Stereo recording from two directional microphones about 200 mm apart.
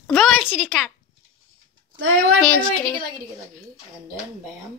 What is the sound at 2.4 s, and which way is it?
Speech, 5° left (ahead or behind).